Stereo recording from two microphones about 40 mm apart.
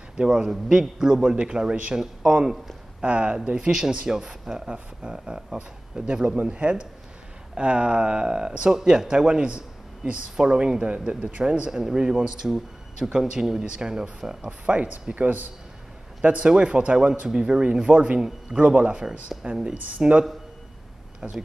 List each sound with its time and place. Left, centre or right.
0.2 s speech: centre
3.0 s speech: right
11.3 s speech: right
11.7 s speech: centre
14.7 s speech: right
16.4 s speech: right
21.2 s speech: right